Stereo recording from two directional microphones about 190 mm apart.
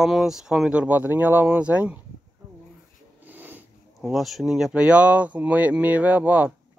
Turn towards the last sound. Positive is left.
turn(degrees=-10)  # may be behind; listen again after turning